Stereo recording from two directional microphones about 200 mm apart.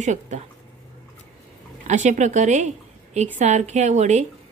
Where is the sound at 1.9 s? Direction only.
35° right (ahead or behind).